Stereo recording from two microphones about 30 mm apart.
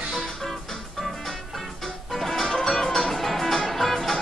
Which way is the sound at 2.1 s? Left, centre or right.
Centre.